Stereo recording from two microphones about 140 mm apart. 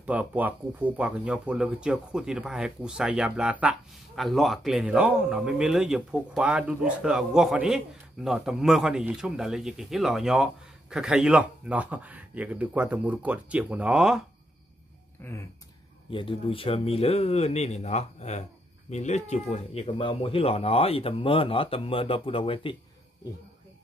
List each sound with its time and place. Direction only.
0.0 s speech: 10° right (ahead or behind)
15.2 s speech: 15° left (ahead or behind)
16.1 s speech: 40° left (ahead or behind)